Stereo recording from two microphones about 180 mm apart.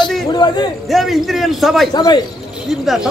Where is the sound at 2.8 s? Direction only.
Centre (ahead or behind).